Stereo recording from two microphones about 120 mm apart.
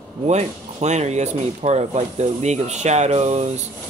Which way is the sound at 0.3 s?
70° right (ahead or behind).